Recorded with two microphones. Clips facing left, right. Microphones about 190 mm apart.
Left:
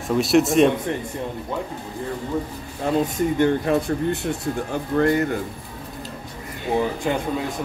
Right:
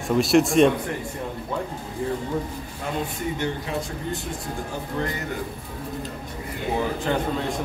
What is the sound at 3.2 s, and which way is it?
Speech, 55° left (ahead or behind).